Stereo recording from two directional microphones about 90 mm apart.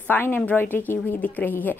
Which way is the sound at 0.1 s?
20° left (ahead or behind).